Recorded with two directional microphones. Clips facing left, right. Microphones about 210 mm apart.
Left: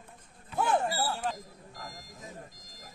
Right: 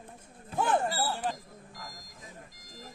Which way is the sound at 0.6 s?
5° left (ahead or behind).